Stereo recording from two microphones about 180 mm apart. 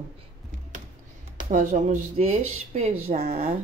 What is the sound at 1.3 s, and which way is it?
Speech, 45° right (ahead or behind).